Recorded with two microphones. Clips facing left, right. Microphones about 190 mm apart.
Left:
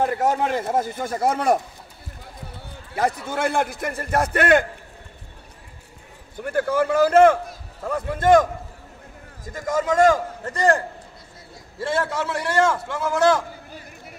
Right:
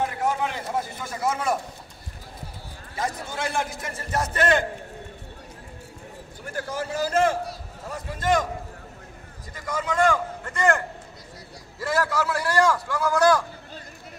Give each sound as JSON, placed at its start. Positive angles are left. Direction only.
{"t": 0.2, "sound": "speech", "side_deg": 40}
{"t": 3.0, "sound": "a man's voice", "side_deg": 60}
{"t": 6.4, "sound": "a man's voice", "side_deg": 55}
{"t": 9.5, "sound": "speech", "side_deg": 45}
{"t": 11.8, "sound": "a man's voice", "side_deg": 25}